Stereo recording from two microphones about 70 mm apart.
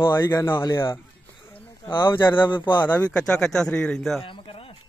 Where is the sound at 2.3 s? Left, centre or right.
Left.